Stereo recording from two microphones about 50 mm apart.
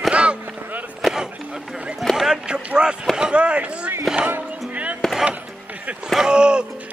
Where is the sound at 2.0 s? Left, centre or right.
Centre.